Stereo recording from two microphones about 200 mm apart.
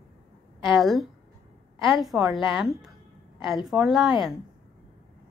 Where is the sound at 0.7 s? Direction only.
Centre (ahead or behind).